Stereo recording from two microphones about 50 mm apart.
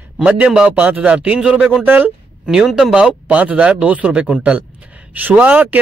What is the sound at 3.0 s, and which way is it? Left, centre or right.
Speech, right.